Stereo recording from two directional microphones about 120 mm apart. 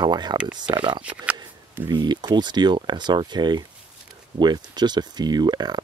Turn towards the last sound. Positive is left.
turn(degrees=-35)  # may be behind; listen again after turning